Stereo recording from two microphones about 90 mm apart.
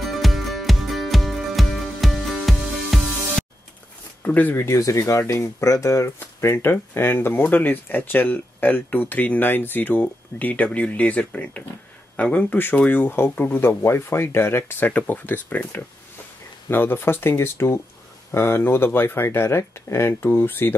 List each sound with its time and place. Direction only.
0.0 s music: centre (ahead or behind)
4.2 s speech: 20° left (ahead or behind)